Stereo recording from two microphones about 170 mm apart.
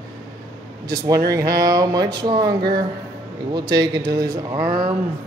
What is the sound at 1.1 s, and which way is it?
Speech, 20° right (ahead or behind).